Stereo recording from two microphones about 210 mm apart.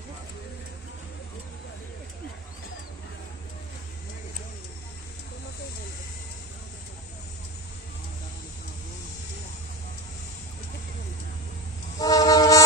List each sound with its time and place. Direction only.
12.0 s vehicle: 15° left (ahead or behind)